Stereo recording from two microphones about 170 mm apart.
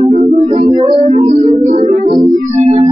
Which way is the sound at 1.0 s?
40° right (ahead or behind).